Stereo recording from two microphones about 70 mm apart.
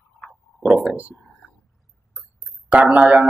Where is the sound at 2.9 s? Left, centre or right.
Centre.